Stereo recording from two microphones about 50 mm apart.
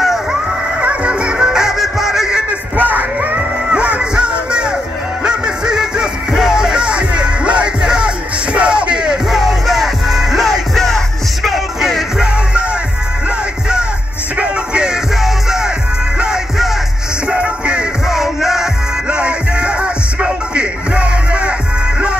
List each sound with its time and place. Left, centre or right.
0.0 s music: centre
0.7 s music: right
2.7 s music: right; by 12.0 s centre
14.3 s music: right
17.3 s music: right
18.0 s music: centre
19.0 s music: right